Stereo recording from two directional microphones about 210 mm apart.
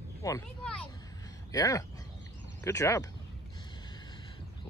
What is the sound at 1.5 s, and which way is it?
Speech, 15° left (ahead or behind).